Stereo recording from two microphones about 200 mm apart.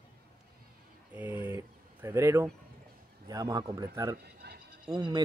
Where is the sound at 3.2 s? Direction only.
20° right (ahead or behind).